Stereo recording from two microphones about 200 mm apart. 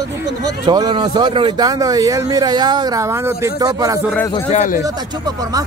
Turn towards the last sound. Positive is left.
turn(degrees=-20)  # may be behind; listen again after turning